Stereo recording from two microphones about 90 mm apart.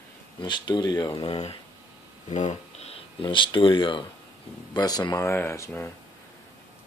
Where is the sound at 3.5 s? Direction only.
70° left (ahead or behind).